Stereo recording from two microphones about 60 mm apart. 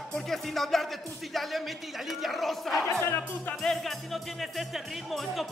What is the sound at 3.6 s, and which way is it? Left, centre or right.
Music, centre.